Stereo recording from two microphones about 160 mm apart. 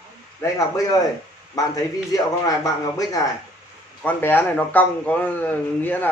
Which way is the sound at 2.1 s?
20° left (ahead or behind).